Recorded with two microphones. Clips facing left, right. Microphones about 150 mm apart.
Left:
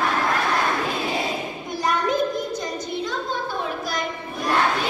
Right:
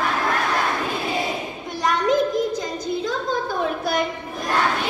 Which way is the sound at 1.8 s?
90° right.